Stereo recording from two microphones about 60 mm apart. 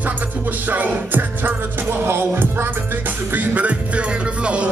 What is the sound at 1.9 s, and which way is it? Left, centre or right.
Music, right.